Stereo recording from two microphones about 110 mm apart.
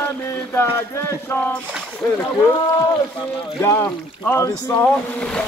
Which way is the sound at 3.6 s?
20° left (ahead or behind).